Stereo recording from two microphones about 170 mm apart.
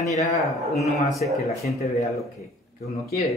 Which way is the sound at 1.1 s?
Centre (ahead or behind).